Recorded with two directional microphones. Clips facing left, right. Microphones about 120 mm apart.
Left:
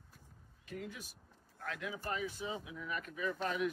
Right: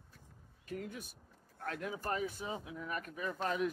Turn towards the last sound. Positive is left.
turn(degrees=-35)  # may be behind; listen again after turning